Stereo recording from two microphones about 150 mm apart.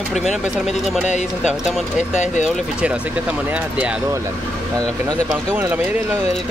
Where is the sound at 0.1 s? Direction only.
Centre (ahead or behind).